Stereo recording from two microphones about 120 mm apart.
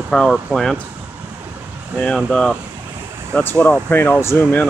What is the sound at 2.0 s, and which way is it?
Speech, 5° left (ahead or behind).